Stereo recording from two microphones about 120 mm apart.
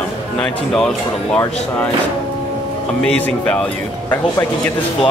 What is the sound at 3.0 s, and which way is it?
Speech, 10° left (ahead or behind).